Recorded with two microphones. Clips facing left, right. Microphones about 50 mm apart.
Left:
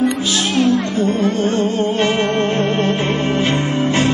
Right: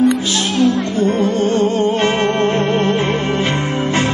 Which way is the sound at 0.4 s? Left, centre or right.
Left.